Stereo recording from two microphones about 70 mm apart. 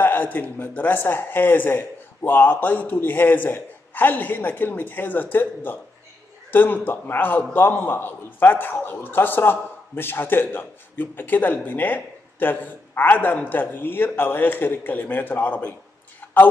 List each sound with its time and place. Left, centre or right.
0.0 s a man's voice: left